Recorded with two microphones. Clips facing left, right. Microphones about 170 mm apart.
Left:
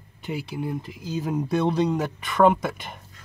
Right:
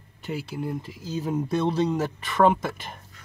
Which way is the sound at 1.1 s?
10° left (ahead or behind).